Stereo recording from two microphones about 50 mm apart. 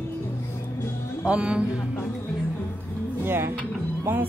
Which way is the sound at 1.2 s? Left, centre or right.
Right.